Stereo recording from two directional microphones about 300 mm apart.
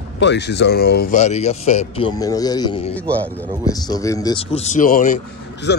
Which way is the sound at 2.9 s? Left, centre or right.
Centre.